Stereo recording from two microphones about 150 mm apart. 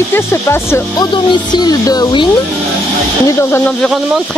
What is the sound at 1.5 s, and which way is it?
Speech, 25° left (ahead or behind).